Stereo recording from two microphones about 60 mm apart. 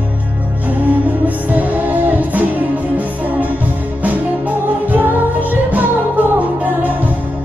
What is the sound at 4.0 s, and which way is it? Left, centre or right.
Music, right.